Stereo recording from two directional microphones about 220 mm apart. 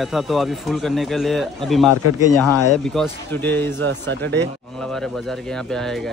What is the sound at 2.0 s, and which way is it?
Speech, 90° left.